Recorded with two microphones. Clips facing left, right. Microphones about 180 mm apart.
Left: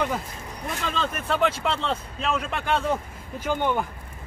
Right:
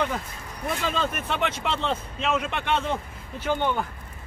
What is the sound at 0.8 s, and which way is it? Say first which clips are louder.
Speech: left 1 dB; 5° right (ahead or behind).